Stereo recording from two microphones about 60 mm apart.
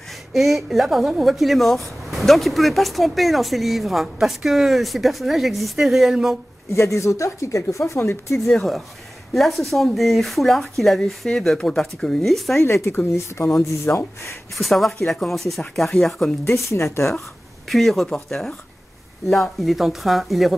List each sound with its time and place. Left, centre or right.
0.1 s speech: centre
6.7 s speech: left
8.5 s speech: centre
12.6 s speech: left
13.9 s speech: left
14.5 s speech: centre
16.7 s speech: left
17.6 s speech: centre